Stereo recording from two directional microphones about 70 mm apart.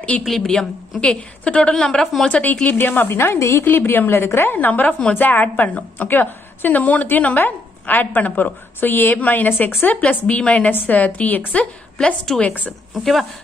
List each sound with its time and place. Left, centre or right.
0.4 s a woman's voice: centre
2.8 s a woman's voice: left
3.6 s a woman's voice: left
13.0 s speech: centre